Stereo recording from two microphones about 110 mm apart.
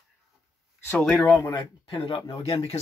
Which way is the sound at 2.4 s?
60° left (ahead or behind).